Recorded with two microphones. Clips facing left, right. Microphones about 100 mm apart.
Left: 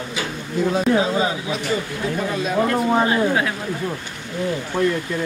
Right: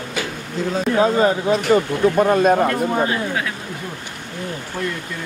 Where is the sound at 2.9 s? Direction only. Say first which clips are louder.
Left 3 dB; 30° left (ahead or behind).